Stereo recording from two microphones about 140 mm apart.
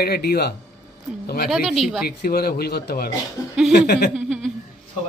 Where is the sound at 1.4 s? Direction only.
Centre (ahead or behind).